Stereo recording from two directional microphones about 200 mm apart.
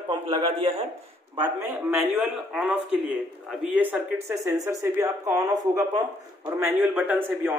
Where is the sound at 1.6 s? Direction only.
10° right (ahead or behind).